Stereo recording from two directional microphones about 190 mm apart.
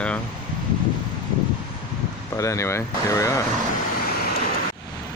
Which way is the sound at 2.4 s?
15° left (ahead or behind).